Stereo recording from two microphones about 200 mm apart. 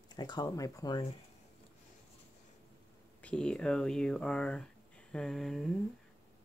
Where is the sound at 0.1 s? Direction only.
20° left (ahead or behind).